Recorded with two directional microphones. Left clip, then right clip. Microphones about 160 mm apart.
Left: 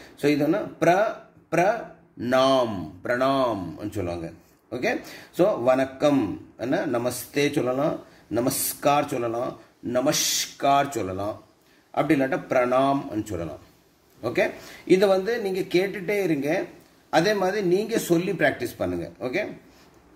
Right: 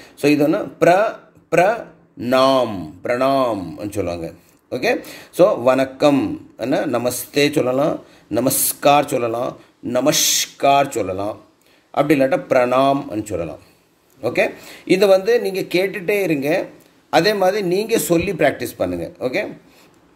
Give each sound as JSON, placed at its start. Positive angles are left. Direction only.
{"t": 0.2, "sound": "a man's voice", "side_deg": -30}